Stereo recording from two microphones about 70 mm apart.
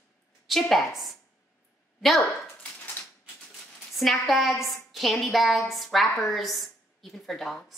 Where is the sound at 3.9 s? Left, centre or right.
Centre.